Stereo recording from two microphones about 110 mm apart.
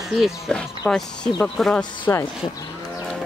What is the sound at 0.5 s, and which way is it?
Speech, 10° left (ahead or behind).